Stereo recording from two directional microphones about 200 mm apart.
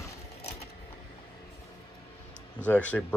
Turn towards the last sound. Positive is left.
turn(degrees=5)  # may be behind; listen again after turning